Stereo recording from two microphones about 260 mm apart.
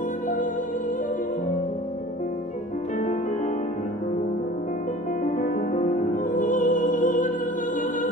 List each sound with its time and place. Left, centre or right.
5.2 s music: left